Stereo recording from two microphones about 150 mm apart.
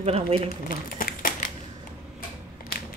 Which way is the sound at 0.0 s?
45° right (ahead or behind).